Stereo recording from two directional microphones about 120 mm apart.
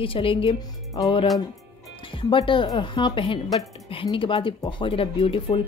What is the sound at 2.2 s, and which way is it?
Speech, 45° left (ahead or behind).